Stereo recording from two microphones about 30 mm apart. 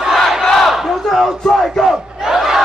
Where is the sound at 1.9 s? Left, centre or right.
Centre.